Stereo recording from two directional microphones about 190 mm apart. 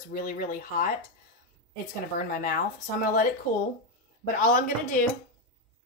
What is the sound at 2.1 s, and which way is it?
Speech, 45° left (ahead or behind).